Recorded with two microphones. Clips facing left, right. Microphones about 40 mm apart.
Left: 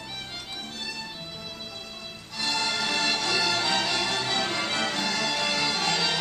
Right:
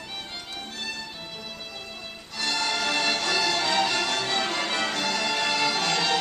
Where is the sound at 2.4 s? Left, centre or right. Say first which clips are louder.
Right 1 dB; centre.